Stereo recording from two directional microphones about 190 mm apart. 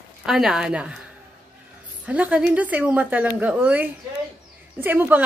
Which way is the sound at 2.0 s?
5° right (ahead or behind).